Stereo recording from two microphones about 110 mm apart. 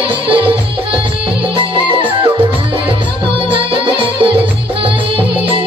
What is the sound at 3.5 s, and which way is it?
Music, 50° right (ahead or behind).